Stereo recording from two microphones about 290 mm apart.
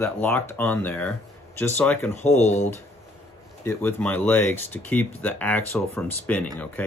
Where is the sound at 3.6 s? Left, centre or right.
Centre.